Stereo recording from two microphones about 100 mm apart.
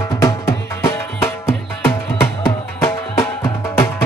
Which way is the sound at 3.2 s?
30° left (ahead or behind).